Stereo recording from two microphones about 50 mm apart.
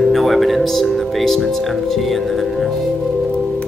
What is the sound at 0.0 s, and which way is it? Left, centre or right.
Speech, centre.